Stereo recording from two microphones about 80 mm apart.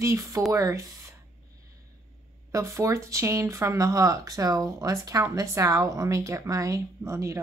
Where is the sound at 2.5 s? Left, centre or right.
Right.